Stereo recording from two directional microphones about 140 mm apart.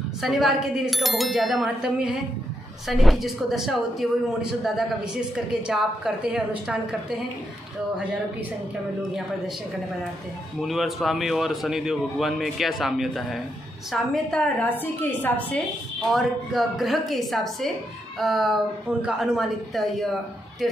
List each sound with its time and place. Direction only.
0.2 s speech: centre (ahead or behind)
10.6 s a woman's voice: centre (ahead or behind)
16.1 s speech: centre (ahead or behind)